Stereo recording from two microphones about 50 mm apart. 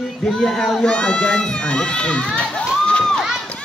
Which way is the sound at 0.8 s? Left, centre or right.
Centre.